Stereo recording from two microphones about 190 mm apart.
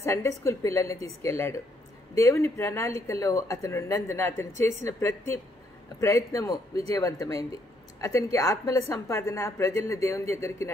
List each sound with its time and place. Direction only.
0.0 s a woman's voice: 15° left (ahead or behind)